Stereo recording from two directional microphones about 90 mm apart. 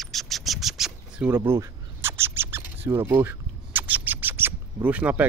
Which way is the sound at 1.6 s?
30° right (ahead or behind).